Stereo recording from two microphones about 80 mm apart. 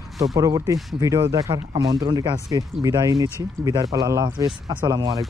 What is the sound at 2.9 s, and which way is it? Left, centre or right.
Speech, right.